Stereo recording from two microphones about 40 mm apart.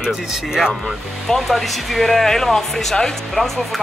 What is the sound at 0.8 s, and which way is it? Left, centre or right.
Speech, centre.